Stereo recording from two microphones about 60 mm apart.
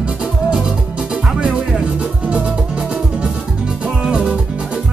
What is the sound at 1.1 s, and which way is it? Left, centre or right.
Music, centre.